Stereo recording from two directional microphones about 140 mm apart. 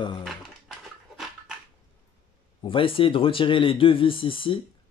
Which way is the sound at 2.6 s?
40° left (ahead or behind).